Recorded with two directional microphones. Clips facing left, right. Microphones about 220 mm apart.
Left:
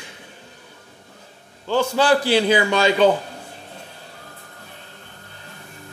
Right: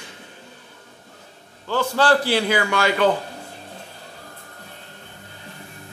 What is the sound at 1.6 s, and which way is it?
Speech, 15° left (ahead or behind).